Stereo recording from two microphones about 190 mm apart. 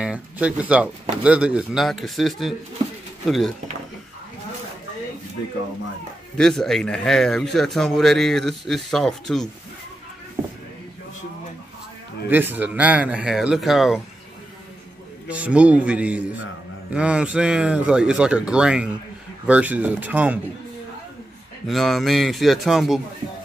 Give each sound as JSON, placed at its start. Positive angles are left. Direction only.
{"t": 0.0, "sound": "speech", "side_deg": -5}
{"t": 6.3, "sound": "speech", "side_deg": 5}
{"t": 12.3, "sound": "speech", "side_deg": -10}
{"t": 15.2, "sound": "speech", "side_deg": -5}
{"t": 21.6, "sound": "speech", "side_deg": 0}